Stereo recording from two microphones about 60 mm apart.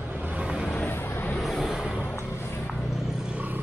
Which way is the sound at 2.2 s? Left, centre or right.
Left.